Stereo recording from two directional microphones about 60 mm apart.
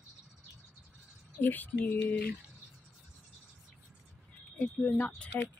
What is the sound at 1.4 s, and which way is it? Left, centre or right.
Speech, left.